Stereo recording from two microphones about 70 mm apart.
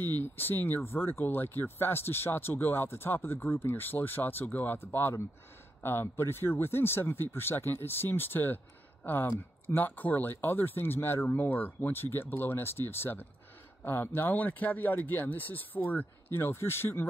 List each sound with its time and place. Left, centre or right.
0.2 s speech: left